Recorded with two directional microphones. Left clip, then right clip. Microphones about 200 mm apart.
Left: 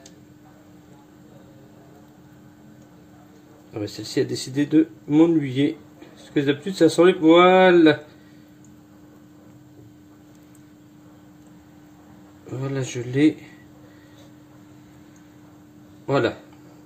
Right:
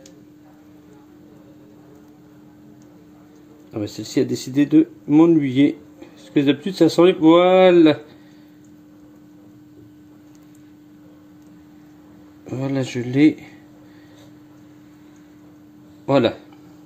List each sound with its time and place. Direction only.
3.7 s speech: 30° right (ahead or behind)
12.4 s a sound: 35° right (ahead or behind)
16.1 s speech: 35° right (ahead or behind)